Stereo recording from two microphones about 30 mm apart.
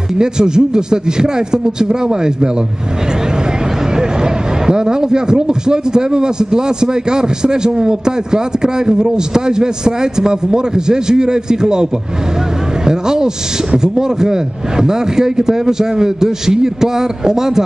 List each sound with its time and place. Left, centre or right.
0.2 s speech: right
4.2 s speech: right
12.8 s a sound: right
13.9 s speech: right